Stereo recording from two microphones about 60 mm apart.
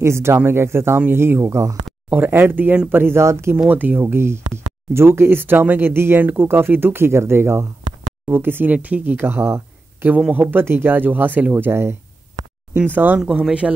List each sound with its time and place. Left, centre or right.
0.0 s speech: right
1.5 s speech: right
2.0 s speech: right
3.5 s speech: right
12.7 s speech: right
13.2 s speech: centre